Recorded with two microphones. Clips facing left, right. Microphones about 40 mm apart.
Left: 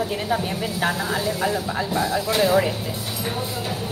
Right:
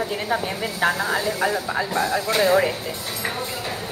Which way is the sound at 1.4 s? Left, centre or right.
Centre.